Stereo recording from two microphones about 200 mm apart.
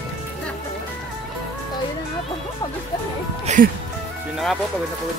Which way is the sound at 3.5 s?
35° right (ahead or behind).